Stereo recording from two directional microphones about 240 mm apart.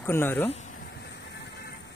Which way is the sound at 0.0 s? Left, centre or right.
Centre.